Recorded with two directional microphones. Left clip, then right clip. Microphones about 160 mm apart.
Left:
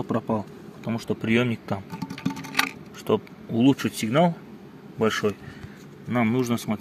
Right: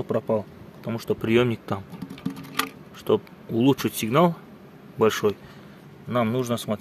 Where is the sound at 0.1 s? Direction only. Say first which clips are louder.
Right 4 dB; 15° right (ahead or behind).